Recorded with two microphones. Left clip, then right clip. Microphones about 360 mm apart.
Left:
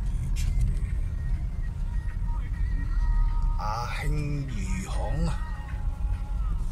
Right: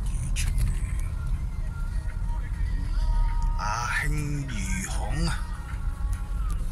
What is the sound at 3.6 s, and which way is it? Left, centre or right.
Music, centre.